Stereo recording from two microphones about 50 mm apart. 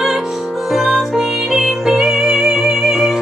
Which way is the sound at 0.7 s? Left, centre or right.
Centre.